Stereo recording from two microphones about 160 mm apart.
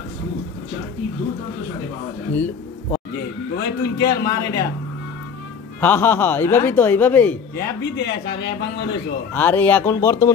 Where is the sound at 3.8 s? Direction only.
90° left.